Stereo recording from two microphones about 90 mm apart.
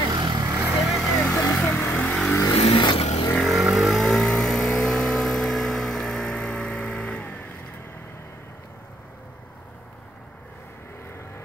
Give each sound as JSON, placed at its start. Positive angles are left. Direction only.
{"t": 0.1, "sound": "vehicle", "side_deg": -50}
{"t": 0.5, "sound": "vehicle", "side_deg": -25}
{"t": 0.7, "sound": "vehicle", "side_deg": 0}
{"t": 1.8, "sound": "vehicle", "side_deg": 20}
{"t": 2.5, "sound": "vehicle", "side_deg": 90}
{"t": 2.8, "sound": "vehicle", "side_deg": 70}
{"t": 3.3, "sound": "vehicle", "side_deg": 0}